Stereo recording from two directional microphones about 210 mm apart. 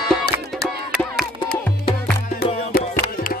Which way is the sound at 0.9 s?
Centre (ahead or behind).